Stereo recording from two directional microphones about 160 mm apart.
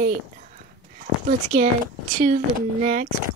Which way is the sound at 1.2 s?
60° right (ahead or behind).